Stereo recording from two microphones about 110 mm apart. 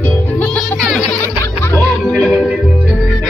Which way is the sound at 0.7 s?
Centre (ahead or behind).